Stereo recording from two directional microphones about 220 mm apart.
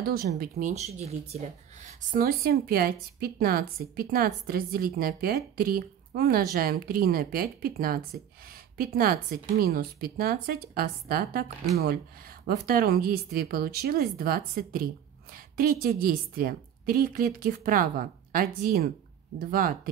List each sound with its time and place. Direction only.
0.0 s speech: 45° right (ahead or behind)
12.4 s a woman's voice: 40° right (ahead or behind)